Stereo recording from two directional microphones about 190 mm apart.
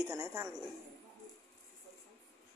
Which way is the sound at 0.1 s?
15° right (ahead or behind).